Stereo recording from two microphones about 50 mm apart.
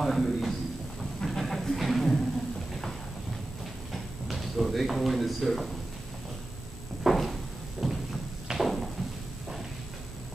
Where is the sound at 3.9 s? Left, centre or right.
Centre.